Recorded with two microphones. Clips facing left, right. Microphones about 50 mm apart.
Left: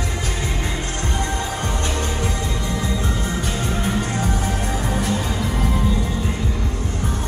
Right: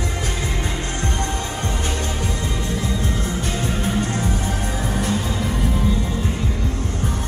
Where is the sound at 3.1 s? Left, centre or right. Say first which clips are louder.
Even; centre.